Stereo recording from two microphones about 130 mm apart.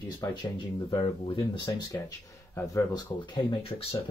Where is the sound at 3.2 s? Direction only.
45° left (ahead or behind).